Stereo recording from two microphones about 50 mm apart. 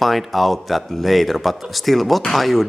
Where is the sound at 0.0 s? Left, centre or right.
Centre.